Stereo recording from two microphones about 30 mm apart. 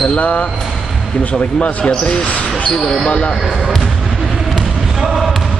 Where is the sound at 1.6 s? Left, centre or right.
Left.